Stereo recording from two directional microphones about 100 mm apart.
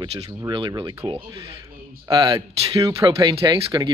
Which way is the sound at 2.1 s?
50° right (ahead or behind).